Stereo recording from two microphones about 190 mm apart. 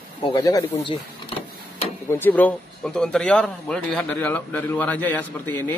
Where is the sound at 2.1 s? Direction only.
10° left (ahead or behind).